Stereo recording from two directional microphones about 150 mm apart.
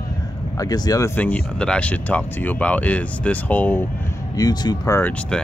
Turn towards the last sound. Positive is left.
turn(degrees=10)  # may be behind; listen again after turning